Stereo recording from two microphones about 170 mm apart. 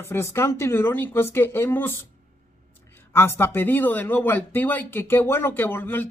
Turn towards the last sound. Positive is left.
turn(degrees=15)  # may be behind; listen again after turning